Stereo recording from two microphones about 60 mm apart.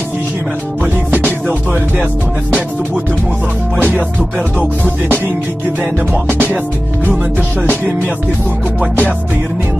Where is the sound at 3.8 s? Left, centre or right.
Right.